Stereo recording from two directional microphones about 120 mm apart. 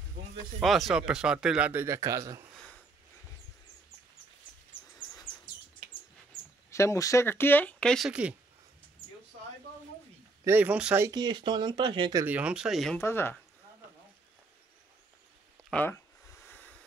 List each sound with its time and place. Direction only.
0.6 s speech: centre (ahead or behind)
1.7 s speech: 20° right (ahead or behind)
6.7 s speech: 25° left (ahead or behind); by 8.1 s 5° left (ahead or behind)
8.1 s speech: 10° right (ahead or behind)
10.4 s speech: 15° right (ahead or behind)
11.1 s speech: 35° right (ahead or behind)
12.3 s speech: 10° right (ahead or behind)
12.9 s speech: 20° left (ahead or behind)
15.7 s a sound: 15° left (ahead or behind)